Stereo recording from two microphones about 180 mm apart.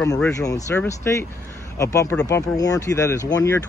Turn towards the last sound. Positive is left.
turn(degrees=15)  # may be behind; listen again after turning